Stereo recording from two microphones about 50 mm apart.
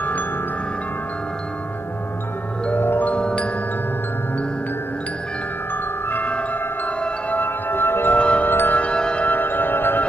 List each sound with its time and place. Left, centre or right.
2.8 s music: left
3.1 s marimba: left
6.0 s tubular bells: left
7.0 s singing bowl: left
8.2 s music: left
8.5 s music: left
8.7 s music: left
9.2 s music: left